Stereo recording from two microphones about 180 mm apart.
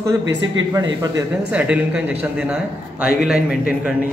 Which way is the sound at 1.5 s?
5° right (ahead or behind).